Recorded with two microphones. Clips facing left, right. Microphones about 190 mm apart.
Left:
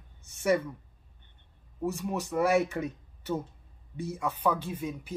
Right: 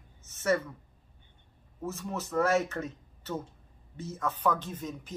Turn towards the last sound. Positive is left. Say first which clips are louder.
# left 3 dB
turn(degrees=10)  # may be behind; listen again after turning